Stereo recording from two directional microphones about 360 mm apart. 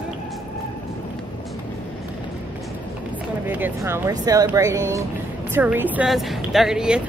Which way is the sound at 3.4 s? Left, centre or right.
Centre.